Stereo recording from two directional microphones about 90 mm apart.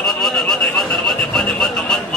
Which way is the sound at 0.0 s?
5° left (ahead or behind).